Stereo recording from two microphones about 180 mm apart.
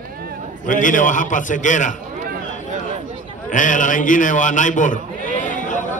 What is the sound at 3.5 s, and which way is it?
A man's voice, 45° left (ahead or behind).